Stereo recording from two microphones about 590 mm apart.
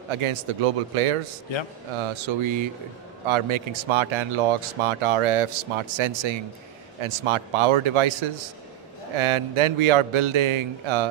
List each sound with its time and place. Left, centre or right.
0.1 s a man's voice: right
2.1 s a man's voice: right